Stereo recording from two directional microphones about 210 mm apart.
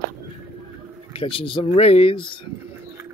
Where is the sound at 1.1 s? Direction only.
25° left (ahead or behind).